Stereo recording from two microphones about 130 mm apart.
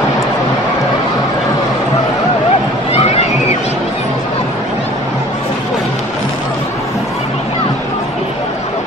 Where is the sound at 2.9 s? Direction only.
55° left (ahead or behind).